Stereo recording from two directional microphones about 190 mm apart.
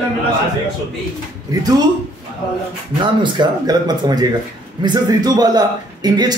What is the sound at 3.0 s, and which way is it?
A man's voice, 25° right (ahead or behind).